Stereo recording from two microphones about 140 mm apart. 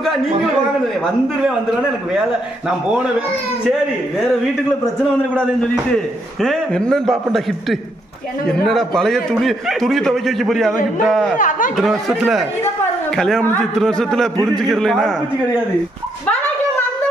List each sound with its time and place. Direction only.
1.4 s a man's voice: 5° right (ahead or behind)
6.4 s a man's voice: centre (ahead or behind)
8.5 s a man's voice: 5° left (ahead or behind)
11.3 s speech: 70° left (ahead or behind)
12.1 s a man's voice: centre (ahead or behind)